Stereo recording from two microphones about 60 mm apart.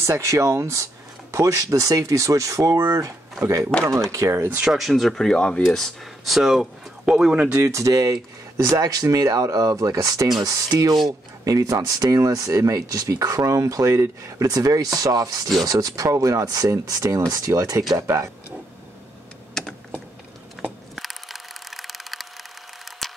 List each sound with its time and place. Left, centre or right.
0.0 s speech: right
1.3 s speech: right
3.3 s speech: right
4.6 s speech: centre
7.5 s speech: right
7.8 s speech: right
17.6 s speech: right
17.9 s speech: right
19.6 s typing: centre
20.9 s camera: centre